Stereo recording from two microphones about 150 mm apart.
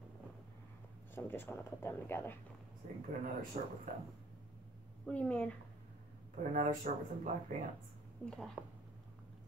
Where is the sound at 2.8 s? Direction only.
60° right (ahead or behind).